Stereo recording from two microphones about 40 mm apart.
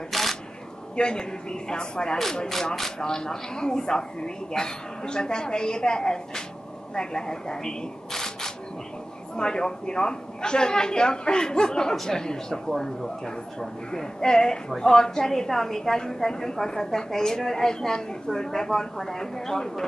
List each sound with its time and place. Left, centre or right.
0.1 s single-lens reflex camera: centre
0.9 s a woman's voice: left